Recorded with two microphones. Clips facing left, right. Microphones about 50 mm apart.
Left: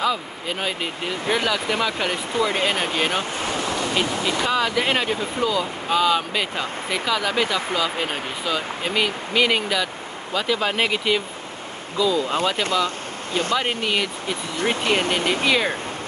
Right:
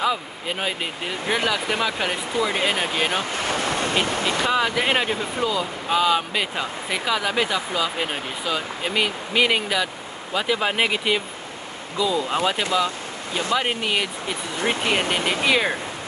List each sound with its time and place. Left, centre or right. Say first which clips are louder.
0.0 s speech: even; centre
3.4 s speech: right 1 dB; right
4.5 s speech: even; centre
12.7 s a sound: even; right
13.6 s speech: even; centre
14.6 s speech: left 1 dB; right